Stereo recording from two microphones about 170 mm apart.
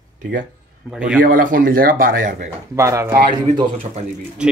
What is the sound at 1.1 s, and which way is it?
A man's voice, 55° right (ahead or behind).